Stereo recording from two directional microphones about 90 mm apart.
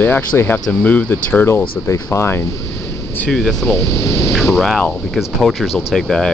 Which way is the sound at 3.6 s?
30° left (ahead or behind).